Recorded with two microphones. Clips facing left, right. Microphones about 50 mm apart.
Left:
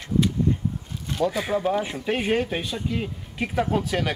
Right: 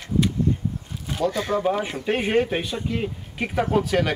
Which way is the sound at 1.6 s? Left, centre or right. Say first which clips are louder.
Right 1 dB; centre.